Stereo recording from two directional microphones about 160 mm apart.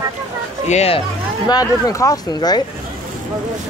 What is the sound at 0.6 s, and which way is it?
Speech, 40° left (ahead or behind).